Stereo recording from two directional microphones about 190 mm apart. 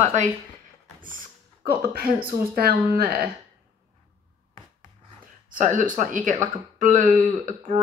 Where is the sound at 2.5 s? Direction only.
55° right (ahead or behind).